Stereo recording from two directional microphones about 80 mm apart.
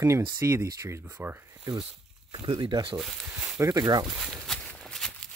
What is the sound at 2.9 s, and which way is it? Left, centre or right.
Speech, centre.